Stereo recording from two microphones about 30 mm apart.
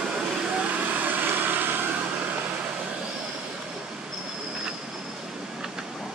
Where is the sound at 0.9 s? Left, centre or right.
Right.